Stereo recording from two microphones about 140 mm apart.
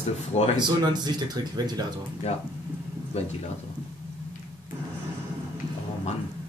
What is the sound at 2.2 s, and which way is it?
Speech, 50° left (ahead or behind).